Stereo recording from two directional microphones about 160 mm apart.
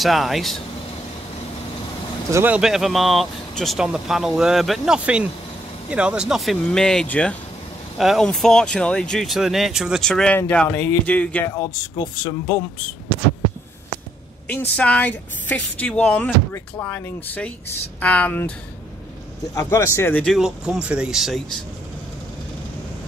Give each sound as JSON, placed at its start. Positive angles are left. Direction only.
{"t": 0.0, "sound": "speech", "side_deg": 0}
{"t": 2.3, "sound": "speech", "side_deg": -10}
{"t": 11.5, "sound": "speech", "side_deg": 25}
{"t": 14.5, "sound": "a woman's voice", "side_deg": 10}
{"t": 19.5, "sound": "a woman's voice", "side_deg": 20}
{"t": 20.3, "sound": "speech", "side_deg": 0}